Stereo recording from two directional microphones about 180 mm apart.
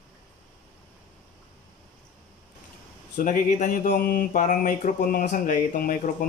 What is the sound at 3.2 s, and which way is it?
Speech, 45° left (ahead or behind).